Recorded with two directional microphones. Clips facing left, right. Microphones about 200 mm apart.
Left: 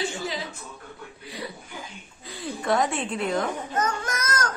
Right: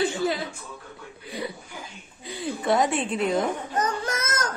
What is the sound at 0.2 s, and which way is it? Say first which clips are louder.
Chuckle: right 6 dB; 55° right (ahead or behind).